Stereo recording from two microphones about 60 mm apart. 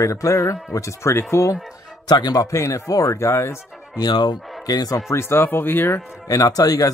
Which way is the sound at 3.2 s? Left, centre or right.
Left.